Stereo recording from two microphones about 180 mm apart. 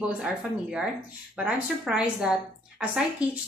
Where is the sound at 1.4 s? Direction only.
5° right (ahead or behind).